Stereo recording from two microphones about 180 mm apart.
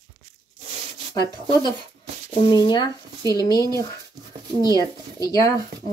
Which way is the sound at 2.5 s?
25° left (ahead or behind).